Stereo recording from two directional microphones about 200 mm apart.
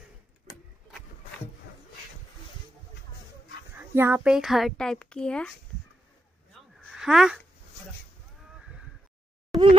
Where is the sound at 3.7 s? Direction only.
10° right (ahead or behind); by 5.5 s 5° left (ahead or behind).